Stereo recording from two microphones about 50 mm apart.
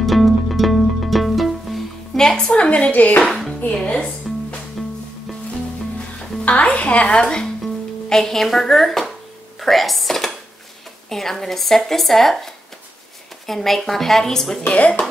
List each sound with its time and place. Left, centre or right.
0.0 s music: centre
2.1 s music: centre
2.5 s a woman's voice: centre
2.9 s speech: left
3.2 s music: centre
6.4 s a woman's voice: left
7.6 s speech: centre
14.7 s a woman's voice: left